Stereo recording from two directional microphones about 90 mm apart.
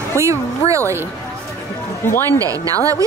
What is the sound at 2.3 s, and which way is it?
Speech, 40° right (ahead or behind).